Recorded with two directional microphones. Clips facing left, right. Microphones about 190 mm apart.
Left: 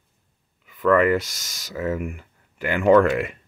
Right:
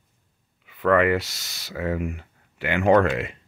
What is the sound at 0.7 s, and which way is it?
Speech, 45° left (ahead or behind).